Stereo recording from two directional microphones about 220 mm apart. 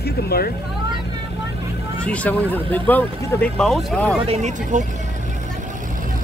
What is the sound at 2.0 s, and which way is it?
Speech, 5° left (ahead or behind).